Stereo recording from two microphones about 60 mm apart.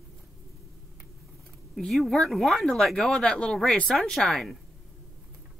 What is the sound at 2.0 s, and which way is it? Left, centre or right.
Speech, centre.